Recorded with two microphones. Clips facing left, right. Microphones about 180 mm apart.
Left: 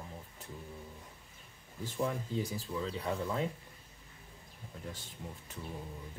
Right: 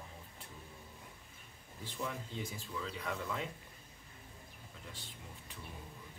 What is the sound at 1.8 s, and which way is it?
Speech, 40° left (ahead or behind).